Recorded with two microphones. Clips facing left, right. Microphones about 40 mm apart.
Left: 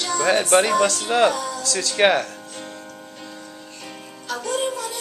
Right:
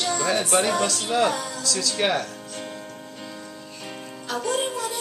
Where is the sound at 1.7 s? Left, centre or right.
Left.